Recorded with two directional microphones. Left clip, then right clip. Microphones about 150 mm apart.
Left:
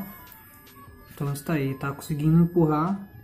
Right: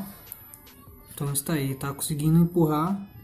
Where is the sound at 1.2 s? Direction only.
5° left (ahead or behind).